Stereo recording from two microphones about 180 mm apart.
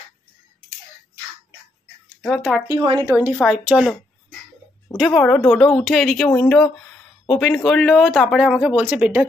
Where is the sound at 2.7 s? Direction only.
25° right (ahead or behind).